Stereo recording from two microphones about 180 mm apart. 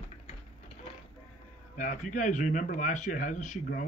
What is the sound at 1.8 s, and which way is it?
Speech, 45° left (ahead or behind).